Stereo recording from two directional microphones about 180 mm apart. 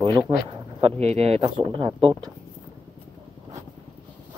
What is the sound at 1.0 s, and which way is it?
Speech, 35° right (ahead or behind).